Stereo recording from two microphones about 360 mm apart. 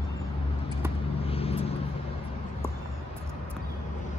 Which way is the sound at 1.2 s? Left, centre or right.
Centre.